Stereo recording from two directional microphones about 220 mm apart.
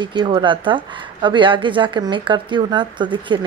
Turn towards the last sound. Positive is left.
turn(degrees=-20)  # may be behind; listen again after turning